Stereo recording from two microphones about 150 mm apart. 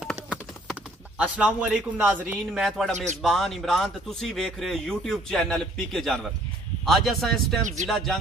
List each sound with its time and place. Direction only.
0.0 s clip-clop: 5° right (ahead or behind)
2.5 s speech: centre (ahead or behind)